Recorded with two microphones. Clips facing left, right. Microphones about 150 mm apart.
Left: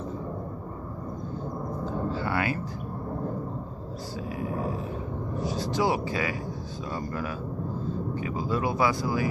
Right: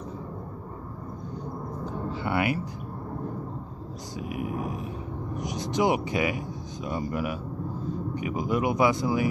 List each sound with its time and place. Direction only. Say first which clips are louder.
1.9 s a sound: even; 20° right (ahead or behind)
5.3 s vehicle: left 1 dB; 20° right (ahead or behind)
6.9 s speech: right 3 dB; 15° right (ahead or behind)